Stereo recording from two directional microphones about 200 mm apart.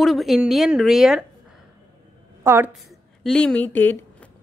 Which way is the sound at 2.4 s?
10° right (ahead or behind).